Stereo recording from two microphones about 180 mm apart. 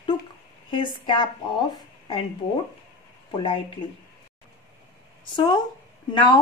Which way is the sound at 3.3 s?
30° left (ahead or behind).